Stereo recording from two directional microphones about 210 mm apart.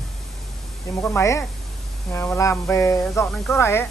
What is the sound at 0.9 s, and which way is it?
Mantra, 15° left (ahead or behind).